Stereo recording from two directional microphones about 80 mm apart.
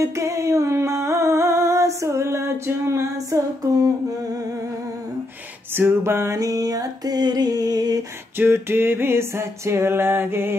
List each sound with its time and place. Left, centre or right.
0.0 s music: right
5.8 s a sound: right
8.4 s music: right